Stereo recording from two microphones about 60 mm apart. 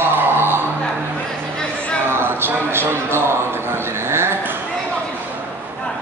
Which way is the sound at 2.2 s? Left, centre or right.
Right.